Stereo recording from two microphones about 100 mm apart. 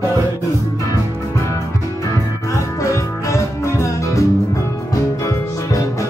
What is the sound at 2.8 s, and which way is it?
Music, 30° left (ahead or behind).